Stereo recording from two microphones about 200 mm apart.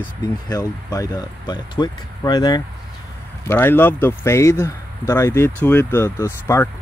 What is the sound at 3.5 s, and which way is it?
Speech, 10° left (ahead or behind).